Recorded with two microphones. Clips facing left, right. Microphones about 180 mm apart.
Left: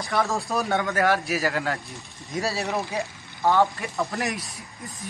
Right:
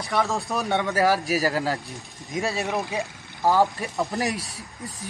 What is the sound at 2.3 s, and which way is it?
Speech, 20° right (ahead or behind).